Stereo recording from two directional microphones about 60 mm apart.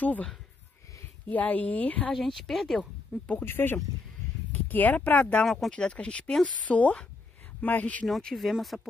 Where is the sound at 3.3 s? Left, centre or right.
Left.